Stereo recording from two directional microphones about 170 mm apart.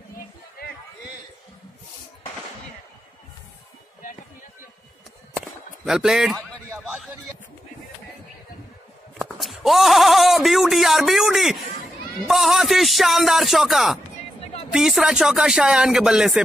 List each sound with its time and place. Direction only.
0.6 s a sound: 65° left (ahead or behind)
5.4 s chop: centre (ahead or behind)
9.2 s a man's voice: centre (ahead or behind)